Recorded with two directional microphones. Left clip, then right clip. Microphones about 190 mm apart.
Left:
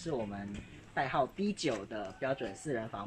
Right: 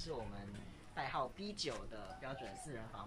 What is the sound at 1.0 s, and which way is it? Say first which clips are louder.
Speech: left 9 dB; 70° left (ahead or behind).